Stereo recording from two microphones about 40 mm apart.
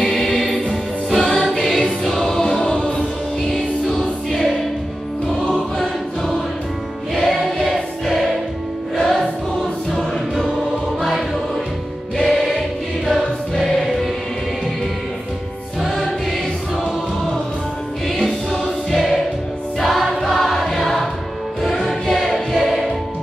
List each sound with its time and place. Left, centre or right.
0.0 s music: centre
0.3 s music: left
1.1 s music: centre
1.5 s choir: centre
2.6 s music: left
3.9 s choir: centre
5.5 s choir: centre
7.2 s music: centre
8.9 s music: centre
13.0 s choir: centre
18.9 s music: centre
19.8 s choir: centre
21.6 s music: centre